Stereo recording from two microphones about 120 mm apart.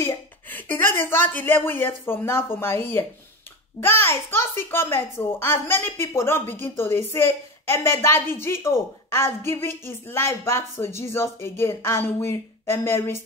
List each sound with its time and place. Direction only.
0.0 s a child's voice: 15° left (ahead or behind)